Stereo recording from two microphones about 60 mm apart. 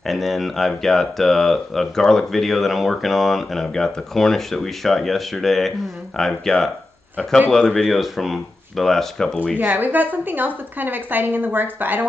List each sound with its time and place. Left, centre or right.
0.0 s speech: centre
9.6 s a woman's voice: right